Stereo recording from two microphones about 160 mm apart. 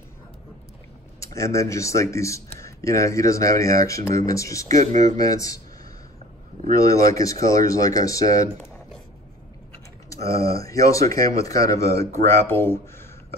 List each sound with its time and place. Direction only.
1.2 s speech: 20° left (ahead or behind)
6.8 s speech: 20° left (ahead or behind)
10.0 s speech: 20° left (ahead or behind)